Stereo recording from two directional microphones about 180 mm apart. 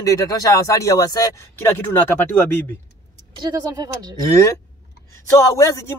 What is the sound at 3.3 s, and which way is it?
Speech, 20° right (ahead or behind).